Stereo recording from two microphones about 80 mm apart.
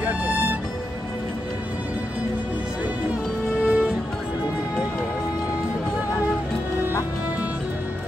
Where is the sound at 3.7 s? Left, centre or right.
Centre.